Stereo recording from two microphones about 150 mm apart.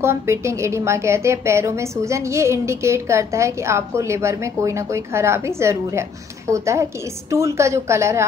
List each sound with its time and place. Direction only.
0.0 s a woman's voice: 15° right (ahead or behind)